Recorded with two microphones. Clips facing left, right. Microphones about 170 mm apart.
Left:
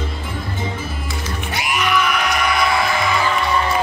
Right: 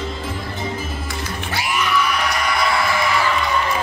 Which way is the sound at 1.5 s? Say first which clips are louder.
Left 1 dB; 20° left (ahead or behind).